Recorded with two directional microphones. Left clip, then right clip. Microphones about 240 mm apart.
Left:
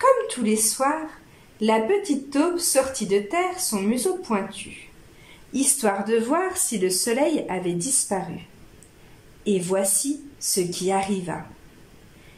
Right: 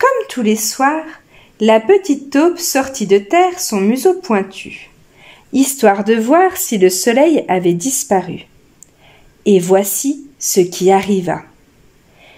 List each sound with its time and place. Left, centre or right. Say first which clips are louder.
0.0 s speech: right 6 dB; right
9.4 s speech: right 12 dB; right